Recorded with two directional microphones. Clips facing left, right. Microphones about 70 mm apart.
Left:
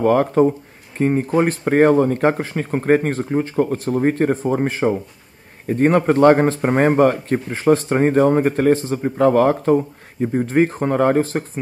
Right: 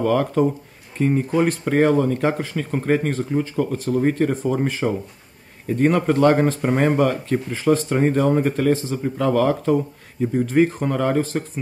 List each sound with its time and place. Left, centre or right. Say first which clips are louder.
0.0 s speech: left 4 dB; left